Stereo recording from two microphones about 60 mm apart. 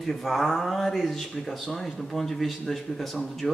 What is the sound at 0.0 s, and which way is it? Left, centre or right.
Speech, centre.